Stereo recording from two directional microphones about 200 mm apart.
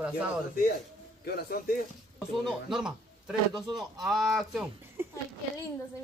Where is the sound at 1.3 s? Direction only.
50° left (ahead or behind).